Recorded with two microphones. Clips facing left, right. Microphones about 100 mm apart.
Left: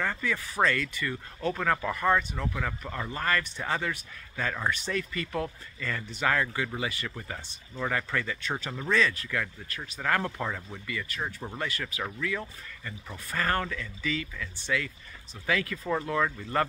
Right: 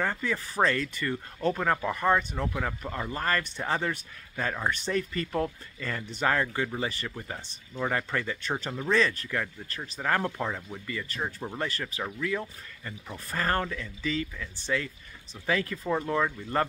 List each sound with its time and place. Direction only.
0.0 s speech: 30° right (ahead or behind)
1.5 s speech: 20° right (ahead or behind)
10.4 s speech: 15° right (ahead or behind)
10.9 s speech: 35° right (ahead or behind)